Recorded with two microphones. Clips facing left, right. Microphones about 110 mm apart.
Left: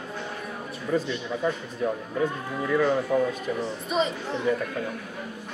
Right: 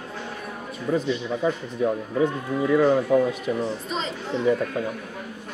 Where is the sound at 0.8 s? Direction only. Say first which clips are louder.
Right 3 dB; 10° right (ahead or behind).